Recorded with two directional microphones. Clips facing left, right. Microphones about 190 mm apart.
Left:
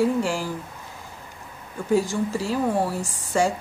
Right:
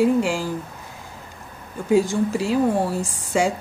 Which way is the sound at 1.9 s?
20° right (ahead or behind).